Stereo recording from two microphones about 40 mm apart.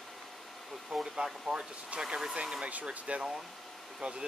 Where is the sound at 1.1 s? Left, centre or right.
Centre.